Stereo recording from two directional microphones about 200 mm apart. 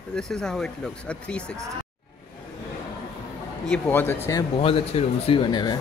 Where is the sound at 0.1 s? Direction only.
5° left (ahead or behind).